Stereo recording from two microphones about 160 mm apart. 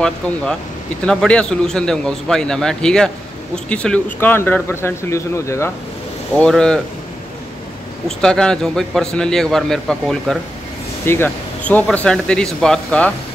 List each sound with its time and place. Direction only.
1.0 s a man's voice: 5° left (ahead or behind)
6.3 s a man's voice: 5° left (ahead or behind)
8.2 s a man's voice: 5° left (ahead or behind)
11.1 s a man's voice: 15° left (ahead or behind)